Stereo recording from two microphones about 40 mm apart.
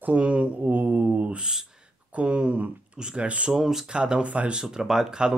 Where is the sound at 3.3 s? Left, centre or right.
Right.